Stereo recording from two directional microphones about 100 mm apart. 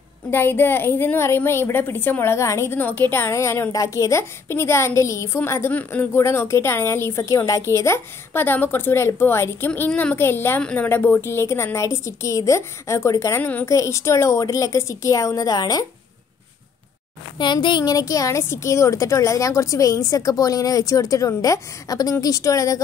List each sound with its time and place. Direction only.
0.3 s a woman's voice: 20° left (ahead or behind)
9.7 s a woman's voice: 15° left (ahead or behind); by 13.4 s 30° left (ahead or behind)
13.4 s a woman's voice: 15° left (ahead or behind)
13.7 s a woman's voice: 30° left (ahead or behind)
17.4 s a woman's voice: 50° left (ahead or behind)
17.9 s a woman's voice: 35° left (ahead or behind)